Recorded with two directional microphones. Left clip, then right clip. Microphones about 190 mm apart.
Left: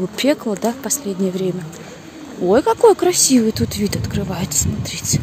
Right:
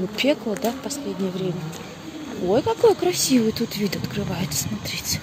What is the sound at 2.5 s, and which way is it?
Speech, 40° left (ahead or behind).